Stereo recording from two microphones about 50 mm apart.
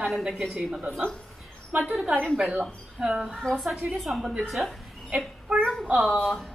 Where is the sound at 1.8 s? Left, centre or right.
Centre.